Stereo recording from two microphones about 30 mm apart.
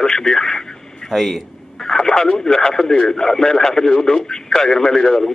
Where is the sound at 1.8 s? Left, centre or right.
Centre.